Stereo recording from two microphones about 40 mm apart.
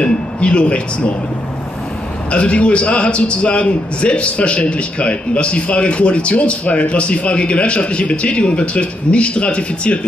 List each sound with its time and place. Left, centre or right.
0.0 s speech: left
2.3 s a man's voice: left